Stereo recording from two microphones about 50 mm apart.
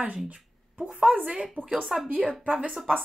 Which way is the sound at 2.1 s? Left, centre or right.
Right.